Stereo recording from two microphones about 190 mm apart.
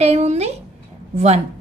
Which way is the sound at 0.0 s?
35° right (ahead or behind).